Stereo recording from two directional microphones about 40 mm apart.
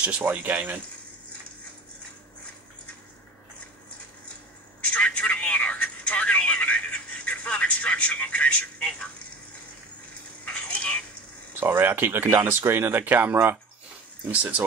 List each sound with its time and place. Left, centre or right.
0.2 s speech: right
4.9 s telephone: left
10.4 s a sound: left
11.6 s speech: right
14.3 s speech: right